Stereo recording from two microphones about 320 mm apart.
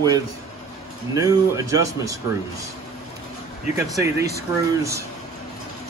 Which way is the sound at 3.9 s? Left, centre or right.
Centre.